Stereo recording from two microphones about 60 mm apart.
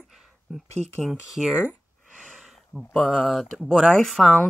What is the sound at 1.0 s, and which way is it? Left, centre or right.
Speech, centre.